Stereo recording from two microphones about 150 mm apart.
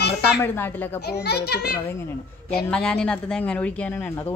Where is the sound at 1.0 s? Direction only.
90° left.